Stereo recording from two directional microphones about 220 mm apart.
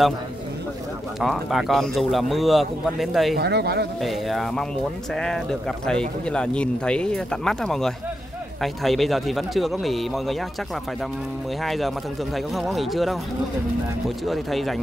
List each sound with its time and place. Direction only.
1.2 s speech: centre (ahead or behind)
3.3 s speech: 45° right (ahead or behind)
4.0 s speech: centre (ahead or behind)
11.6 s speech: centre (ahead or behind)